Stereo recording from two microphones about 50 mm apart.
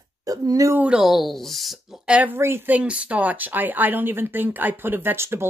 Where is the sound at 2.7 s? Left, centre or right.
Right.